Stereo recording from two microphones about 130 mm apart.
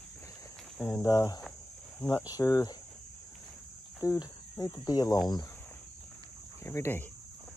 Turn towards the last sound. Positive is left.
turn(degrees=20)  # may be behind; listen again after turning